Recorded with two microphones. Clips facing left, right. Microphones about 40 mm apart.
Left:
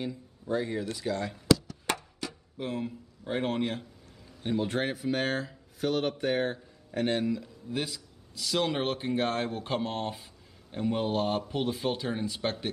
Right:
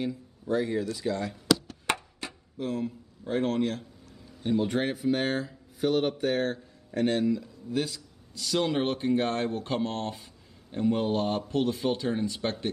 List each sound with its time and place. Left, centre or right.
0.0 s speech: centre
2.5 s a man's voice: left
4.6 s speech: centre
6.2 s a man's voice: centre